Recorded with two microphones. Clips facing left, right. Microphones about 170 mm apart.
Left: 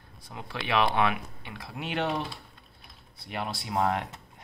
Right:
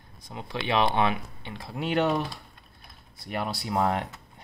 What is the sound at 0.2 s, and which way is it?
Speech, 20° right (ahead or behind).